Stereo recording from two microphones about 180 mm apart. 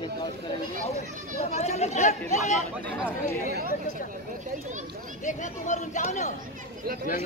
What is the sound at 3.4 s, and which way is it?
Speech, 60° right (ahead or behind).